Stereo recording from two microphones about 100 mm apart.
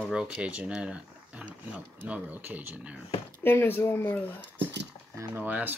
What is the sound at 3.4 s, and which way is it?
Speech, 20° left (ahead or behind).